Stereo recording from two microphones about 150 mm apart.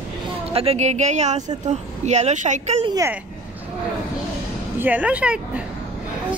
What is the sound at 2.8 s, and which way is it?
Speech, 25° right (ahead or behind).